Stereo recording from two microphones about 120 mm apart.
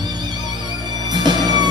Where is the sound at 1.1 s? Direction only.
35° right (ahead or behind).